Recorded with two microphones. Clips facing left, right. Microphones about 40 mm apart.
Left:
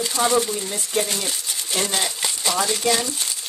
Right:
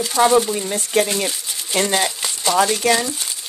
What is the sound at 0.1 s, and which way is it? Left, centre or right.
Speech, right.